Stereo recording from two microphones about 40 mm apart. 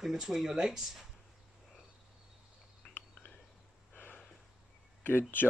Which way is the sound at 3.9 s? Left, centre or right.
Left.